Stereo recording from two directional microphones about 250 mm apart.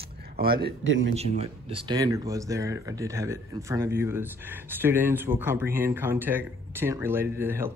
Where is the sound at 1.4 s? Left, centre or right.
Right.